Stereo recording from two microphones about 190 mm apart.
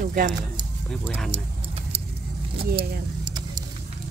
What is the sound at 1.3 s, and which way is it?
Keys jangling, 30° right (ahead or behind).